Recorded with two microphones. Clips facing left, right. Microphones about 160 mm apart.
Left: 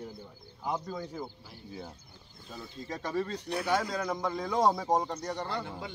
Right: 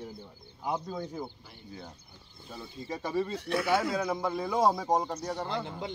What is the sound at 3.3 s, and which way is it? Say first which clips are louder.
Speech: right 3 dB; 90° right.